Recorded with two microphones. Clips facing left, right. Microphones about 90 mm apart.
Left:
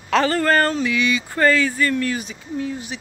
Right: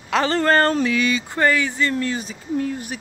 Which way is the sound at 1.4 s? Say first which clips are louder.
Left 2 dB; 20° right (ahead or behind).